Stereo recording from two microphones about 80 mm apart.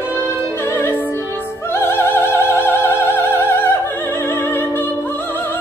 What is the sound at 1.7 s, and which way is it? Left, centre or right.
Opera, left.